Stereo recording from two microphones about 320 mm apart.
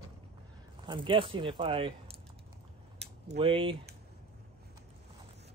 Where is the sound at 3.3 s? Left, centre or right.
Centre.